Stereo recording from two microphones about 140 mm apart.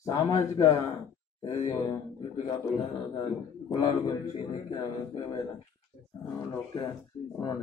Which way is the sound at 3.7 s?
30° left (ahead or behind).